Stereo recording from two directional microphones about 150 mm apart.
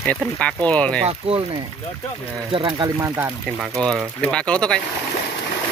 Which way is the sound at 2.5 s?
35° right (ahead or behind).